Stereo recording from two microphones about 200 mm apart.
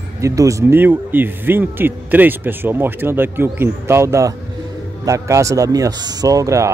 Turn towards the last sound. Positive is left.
turn(degrees=-15)  # may be behind; listen again after turning